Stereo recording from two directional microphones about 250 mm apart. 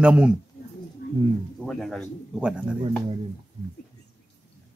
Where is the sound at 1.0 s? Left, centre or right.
Left.